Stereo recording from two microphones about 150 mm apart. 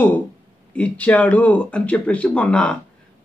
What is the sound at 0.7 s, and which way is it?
Speech, 10° left (ahead or behind).